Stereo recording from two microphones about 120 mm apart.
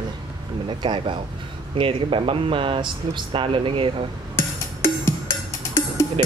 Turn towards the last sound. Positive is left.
turn(degrees=20)  # may be behind; listen again after turning